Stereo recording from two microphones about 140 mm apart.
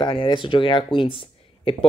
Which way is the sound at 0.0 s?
35° left (ahead or behind).